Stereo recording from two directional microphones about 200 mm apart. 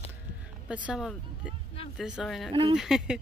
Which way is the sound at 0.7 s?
5° right (ahead or behind).